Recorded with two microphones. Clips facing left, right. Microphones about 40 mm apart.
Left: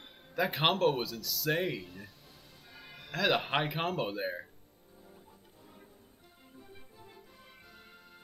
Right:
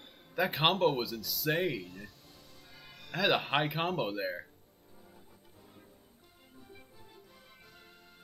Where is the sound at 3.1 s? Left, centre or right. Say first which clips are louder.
Even; centre.